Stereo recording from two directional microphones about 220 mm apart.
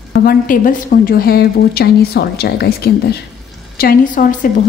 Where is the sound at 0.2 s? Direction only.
40° left (ahead or behind).